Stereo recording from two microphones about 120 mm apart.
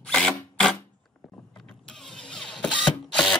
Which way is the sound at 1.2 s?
10° left (ahead or behind).